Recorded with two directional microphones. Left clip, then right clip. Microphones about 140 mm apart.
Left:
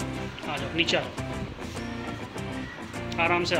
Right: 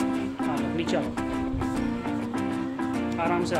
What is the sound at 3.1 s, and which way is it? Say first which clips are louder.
Speech: left 3 dB; 10° right (ahead or behind).